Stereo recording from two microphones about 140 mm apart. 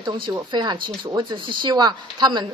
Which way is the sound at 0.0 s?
35° right (ahead or behind).